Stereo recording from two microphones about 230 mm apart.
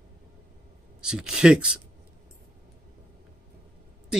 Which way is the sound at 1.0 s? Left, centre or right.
Centre.